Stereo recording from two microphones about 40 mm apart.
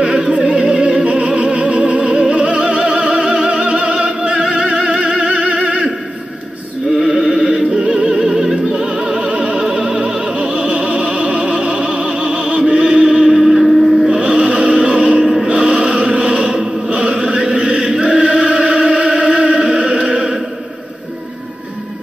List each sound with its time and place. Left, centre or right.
0.0 s music: right
6.9 s a sound: centre
7.2 s music: right
8.1 s opera: centre
8.9 s music: right
13.4 s music: centre
13.7 s a sound: centre
14.0 s music: right